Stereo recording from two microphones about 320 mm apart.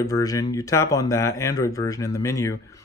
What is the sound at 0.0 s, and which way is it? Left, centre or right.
Speech, centre.